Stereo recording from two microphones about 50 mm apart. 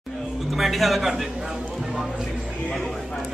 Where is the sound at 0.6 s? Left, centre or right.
Centre.